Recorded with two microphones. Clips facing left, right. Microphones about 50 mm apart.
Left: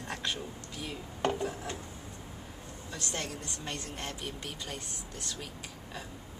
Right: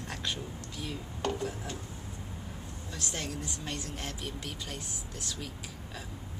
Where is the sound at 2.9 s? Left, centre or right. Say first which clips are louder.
Even; centre.